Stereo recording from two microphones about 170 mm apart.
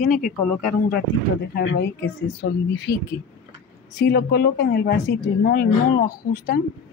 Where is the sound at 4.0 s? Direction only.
70° left (ahead or behind).